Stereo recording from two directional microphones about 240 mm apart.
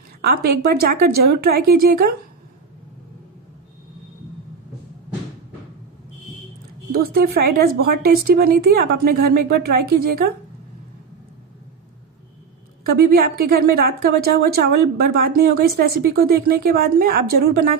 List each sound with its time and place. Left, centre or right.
0.2 s a woman's voice: right
6.9 s a woman's voice: right
12.8 s a woman's voice: right